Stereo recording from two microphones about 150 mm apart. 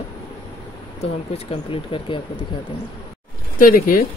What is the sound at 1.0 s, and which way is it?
Speech, 40° left (ahead or behind).